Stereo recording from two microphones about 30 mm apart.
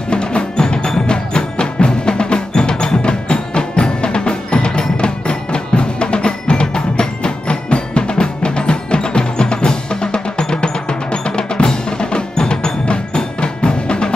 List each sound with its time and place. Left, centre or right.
0.1 s music: left